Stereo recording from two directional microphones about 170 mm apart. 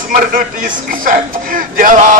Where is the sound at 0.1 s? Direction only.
50° right (ahead or behind).